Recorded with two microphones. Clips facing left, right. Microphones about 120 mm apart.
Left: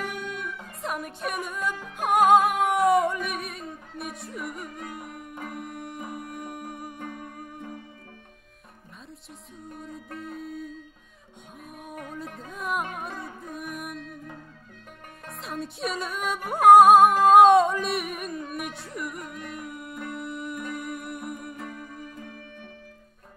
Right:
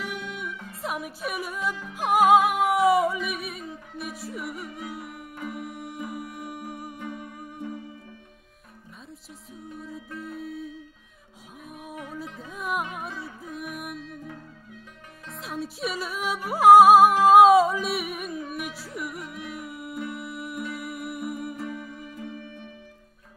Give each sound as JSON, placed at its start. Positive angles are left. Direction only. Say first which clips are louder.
{"t": 0.3, "sound": "music", "louder": "even", "side_deg": -5}
{"t": 7.0, "sound": "music", "louder": "right 1 dB", "side_deg": 50}
{"t": 9.8, "sound": "music", "louder": "right 1 dB", "side_deg": 0}
{"t": 15.3, "sound": "music", "louder": "right 1 dB", "side_deg": 0}
{"t": 21.5, "sound": "music", "louder": "right 4 dB", "side_deg": 45}
{"t": 21.8, "sound": "music", "louder": "right 2 dB", "side_deg": -5}